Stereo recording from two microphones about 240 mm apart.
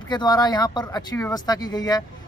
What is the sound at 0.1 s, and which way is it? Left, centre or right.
A man's voice, centre.